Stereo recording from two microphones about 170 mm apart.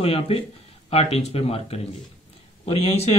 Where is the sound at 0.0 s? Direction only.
35° left (ahead or behind).